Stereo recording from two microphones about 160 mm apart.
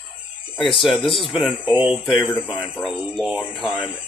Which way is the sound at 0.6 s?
Centre (ahead or behind).